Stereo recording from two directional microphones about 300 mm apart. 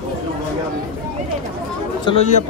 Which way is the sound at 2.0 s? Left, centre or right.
Left.